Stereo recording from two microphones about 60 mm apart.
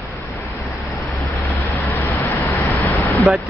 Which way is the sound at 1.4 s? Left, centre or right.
Left.